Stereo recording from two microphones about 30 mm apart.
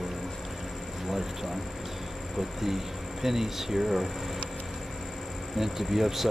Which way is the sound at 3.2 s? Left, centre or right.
Centre.